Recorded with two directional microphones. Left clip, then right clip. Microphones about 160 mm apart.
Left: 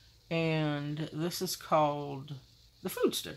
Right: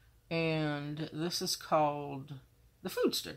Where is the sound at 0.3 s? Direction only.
15° left (ahead or behind).